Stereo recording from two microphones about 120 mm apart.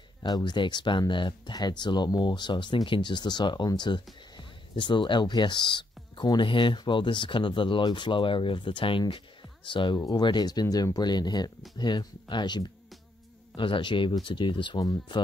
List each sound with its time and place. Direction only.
0.2 s speech: 40° left (ahead or behind)
9.9 s speech: 30° left (ahead or behind)